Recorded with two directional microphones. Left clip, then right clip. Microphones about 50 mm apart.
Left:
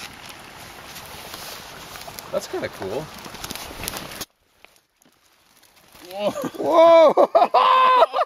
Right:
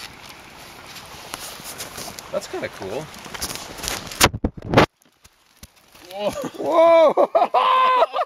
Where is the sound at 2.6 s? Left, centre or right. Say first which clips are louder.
Left 1 dB; left.